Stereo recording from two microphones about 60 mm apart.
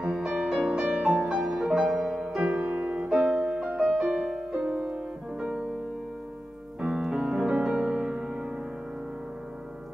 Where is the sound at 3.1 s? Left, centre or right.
Centre.